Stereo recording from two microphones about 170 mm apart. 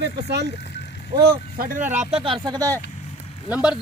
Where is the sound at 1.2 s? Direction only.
60° right (ahead or behind); by 2.7 s 20° right (ahead or behind).